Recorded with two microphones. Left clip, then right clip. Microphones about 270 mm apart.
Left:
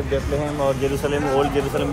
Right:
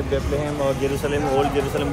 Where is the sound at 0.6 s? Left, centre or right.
Centre.